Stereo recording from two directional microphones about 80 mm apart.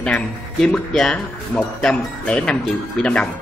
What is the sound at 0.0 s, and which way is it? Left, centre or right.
Speech, centre.